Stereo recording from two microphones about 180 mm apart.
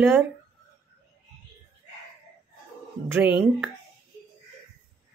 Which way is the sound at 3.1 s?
10° right (ahead or behind).